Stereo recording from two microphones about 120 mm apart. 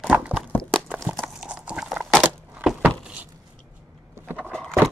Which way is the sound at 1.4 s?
10° right (ahead or behind).